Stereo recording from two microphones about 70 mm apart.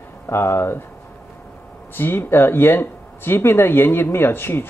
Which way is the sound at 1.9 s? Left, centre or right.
Left.